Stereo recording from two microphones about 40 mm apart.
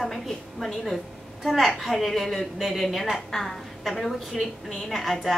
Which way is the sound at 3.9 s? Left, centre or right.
Centre.